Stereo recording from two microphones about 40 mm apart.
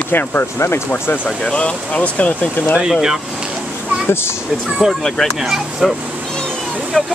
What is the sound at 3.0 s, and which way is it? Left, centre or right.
Speech, centre.